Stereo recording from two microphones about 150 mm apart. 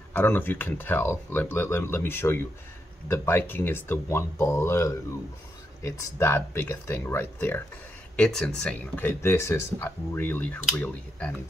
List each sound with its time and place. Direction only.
0.1 s speech: 15° left (ahead or behind)
8.2 s speech: 5° left (ahead or behind)